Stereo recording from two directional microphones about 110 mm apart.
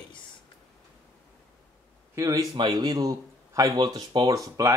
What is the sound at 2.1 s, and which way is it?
A man's voice, 30° right (ahead or behind).